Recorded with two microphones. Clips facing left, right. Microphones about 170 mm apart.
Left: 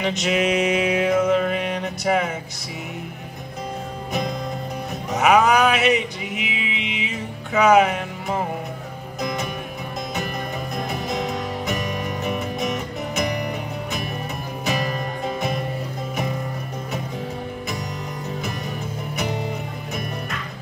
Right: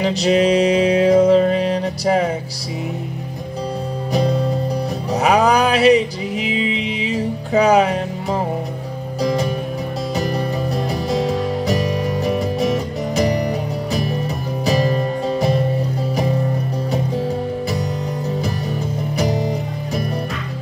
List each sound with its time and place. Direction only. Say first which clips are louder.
0.0 s music: right 6 dB; 35° right (ahead or behind)
4.1 s music: right 8 dB; 35° right (ahead or behind)
19.1 s music: right 6 dB; 35° right (ahead or behind)